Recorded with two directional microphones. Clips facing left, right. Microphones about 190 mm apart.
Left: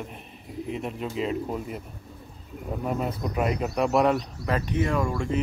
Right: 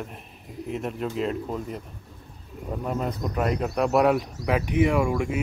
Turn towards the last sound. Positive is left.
turn(degrees=-10)  # may be behind; listen again after turning